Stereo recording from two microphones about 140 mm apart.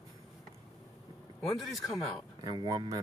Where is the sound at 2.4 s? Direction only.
30° right (ahead or behind).